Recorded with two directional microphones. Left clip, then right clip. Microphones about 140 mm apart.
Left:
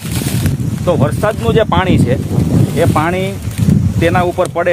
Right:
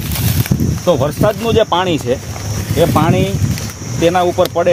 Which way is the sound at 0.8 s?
20° right (ahead or behind).